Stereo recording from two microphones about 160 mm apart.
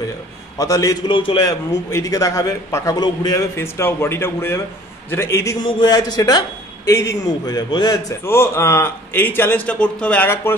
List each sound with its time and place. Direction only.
0.6 s a man's voice: 20° left (ahead or behind)